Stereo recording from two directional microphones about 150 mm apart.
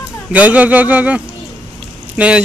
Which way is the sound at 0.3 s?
10° right (ahead or behind).